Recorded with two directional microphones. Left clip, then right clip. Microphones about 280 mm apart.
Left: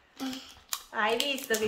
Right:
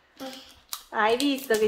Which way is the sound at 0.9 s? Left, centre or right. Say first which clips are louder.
Right 5 dB; right.